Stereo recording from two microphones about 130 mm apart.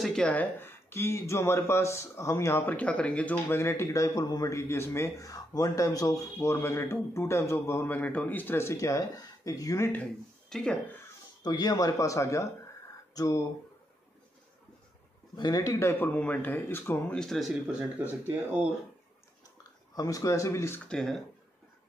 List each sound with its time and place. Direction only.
0.0 s speech: 5° left (ahead or behind); by 9.8 s 25° left (ahead or behind)
10.5 s speech: 5° left (ahead or behind)
11.4 s speech: 30° left (ahead or behind)
15.3 s speech: 30° left (ahead or behind)
17.2 s speech: centre (ahead or behind)
18.2 s speech: 15° right (ahead or behind)
20.0 s speech: 25° left (ahead or behind)
20.8 s speech: 5° left (ahead or behind)